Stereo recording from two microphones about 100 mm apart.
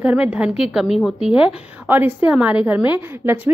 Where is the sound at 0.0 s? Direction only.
15° right (ahead or behind).